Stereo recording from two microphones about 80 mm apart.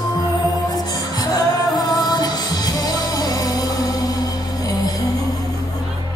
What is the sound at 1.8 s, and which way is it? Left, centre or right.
Music, left.